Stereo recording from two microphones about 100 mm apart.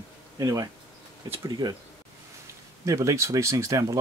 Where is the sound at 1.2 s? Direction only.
70° right (ahead or behind).